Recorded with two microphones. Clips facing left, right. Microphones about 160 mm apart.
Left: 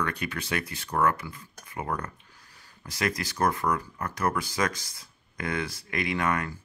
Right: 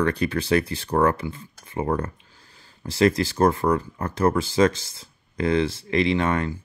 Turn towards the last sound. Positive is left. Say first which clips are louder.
# right 6 dB
turn(degrees=-25)  # may be behind; listen again after turning